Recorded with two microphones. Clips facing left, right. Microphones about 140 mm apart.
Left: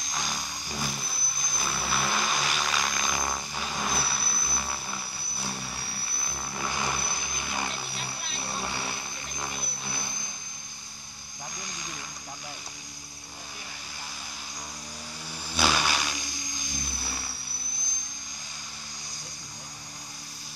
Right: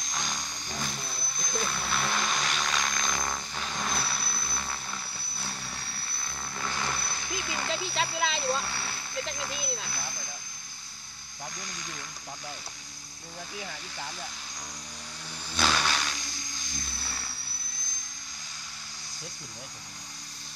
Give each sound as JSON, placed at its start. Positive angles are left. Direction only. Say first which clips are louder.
{"t": 0.0, "sound": "vehicle", "louder": "left 1 dB", "side_deg": 5}
{"t": 7.9, "sound": "a sound", "louder": "right 9 dB", "side_deg": -90}
{"t": 8.4, "sound": "vehicle", "louder": "right 3 dB", "side_deg": 15}
{"t": 15.5, "sound": "vehicle", "louder": "left 1 dB", "side_deg": 10}